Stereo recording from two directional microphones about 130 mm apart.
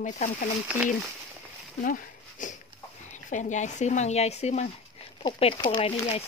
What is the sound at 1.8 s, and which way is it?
Speech, 85° left.